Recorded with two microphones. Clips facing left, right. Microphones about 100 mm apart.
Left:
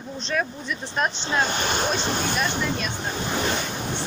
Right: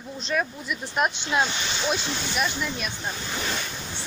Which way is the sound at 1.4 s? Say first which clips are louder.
Left 6 dB; 50° left (ahead or behind).